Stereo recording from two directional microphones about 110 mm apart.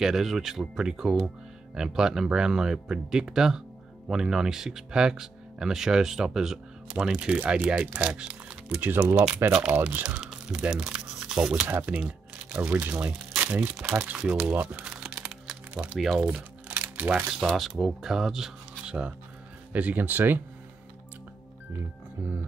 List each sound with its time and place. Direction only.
0.0 s speech: 5° right (ahead or behind)
10.9 s a sound: 5° right (ahead or behind)
11.6 s speech: 15° right (ahead or behind)
14.5 s music: 15° right (ahead or behind)
16.0 s speech: 5° right (ahead or behind)
16.3 s crumpling: 15° right (ahead or behind)
17.3 s speech: 5° right (ahead or behind)